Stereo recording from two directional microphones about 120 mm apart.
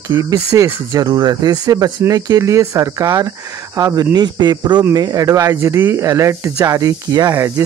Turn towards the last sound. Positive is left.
turn(degrees=-30)  # may be behind; listen again after turning